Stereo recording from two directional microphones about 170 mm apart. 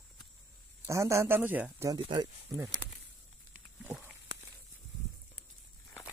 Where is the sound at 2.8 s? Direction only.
10° left (ahead or behind).